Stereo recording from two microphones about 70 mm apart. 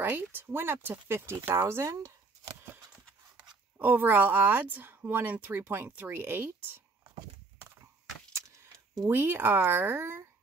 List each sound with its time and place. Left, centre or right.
0.0 s speech: right
3.7 s speech: right
7.8 s horse: right
9.1 s speech: right